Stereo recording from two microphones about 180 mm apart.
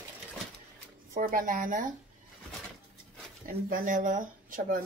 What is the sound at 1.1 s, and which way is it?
Speech, 50° right (ahead or behind).